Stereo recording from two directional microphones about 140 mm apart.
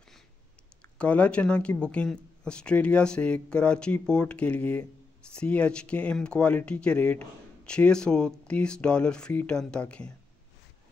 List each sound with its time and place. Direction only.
0.9 s speech: 10° left (ahead or behind)